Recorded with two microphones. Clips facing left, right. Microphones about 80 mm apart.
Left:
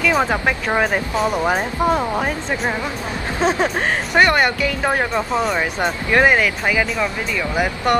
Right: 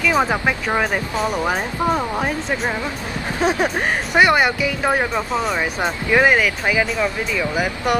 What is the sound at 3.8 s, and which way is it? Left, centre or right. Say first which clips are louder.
Speech: even; centre.